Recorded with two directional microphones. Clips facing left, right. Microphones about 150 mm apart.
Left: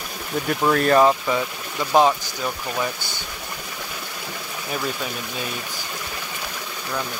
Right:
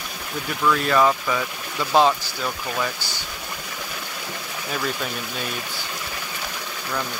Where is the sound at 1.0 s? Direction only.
25° left (ahead or behind).